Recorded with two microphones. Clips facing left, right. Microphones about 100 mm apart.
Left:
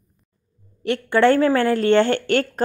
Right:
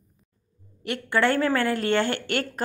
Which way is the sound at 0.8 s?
25° left (ahead or behind).